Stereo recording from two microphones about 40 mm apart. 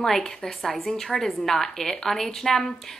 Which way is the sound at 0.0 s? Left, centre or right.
Centre.